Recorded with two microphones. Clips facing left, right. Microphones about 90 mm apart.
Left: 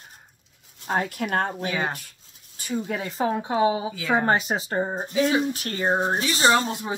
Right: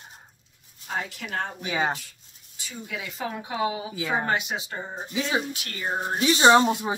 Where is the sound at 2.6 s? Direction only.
45° left (ahead or behind); by 3.9 s 30° left (ahead or behind).